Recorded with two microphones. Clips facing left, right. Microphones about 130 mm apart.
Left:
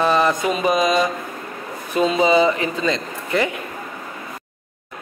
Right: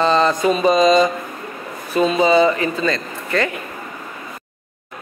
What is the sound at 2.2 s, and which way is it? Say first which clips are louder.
A man's voice: right 2 dB; 15° left (ahead or behind).